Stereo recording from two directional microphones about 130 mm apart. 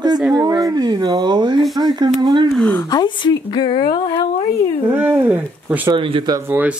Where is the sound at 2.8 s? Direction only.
30° left (ahead or behind).